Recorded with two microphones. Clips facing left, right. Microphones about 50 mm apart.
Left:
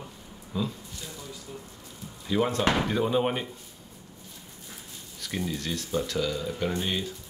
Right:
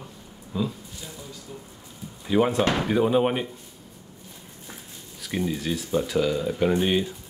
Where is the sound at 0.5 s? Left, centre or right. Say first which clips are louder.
Right 3 dB; centre.